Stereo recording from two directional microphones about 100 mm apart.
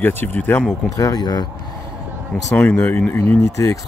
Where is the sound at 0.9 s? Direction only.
40° left (ahead or behind).